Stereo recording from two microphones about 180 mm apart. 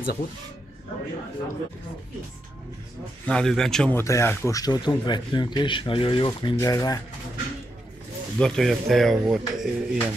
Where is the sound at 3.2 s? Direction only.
5° left (ahead or behind); by 7.0 s 20° left (ahead or behind).